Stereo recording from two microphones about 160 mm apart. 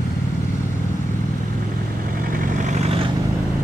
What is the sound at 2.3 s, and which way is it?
Vehicle, 55° right (ahead or behind).